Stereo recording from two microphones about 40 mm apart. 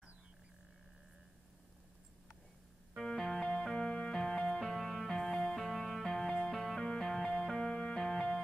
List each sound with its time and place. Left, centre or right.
3.0 s music: centre